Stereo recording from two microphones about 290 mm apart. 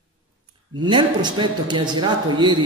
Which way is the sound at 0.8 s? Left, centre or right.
Centre.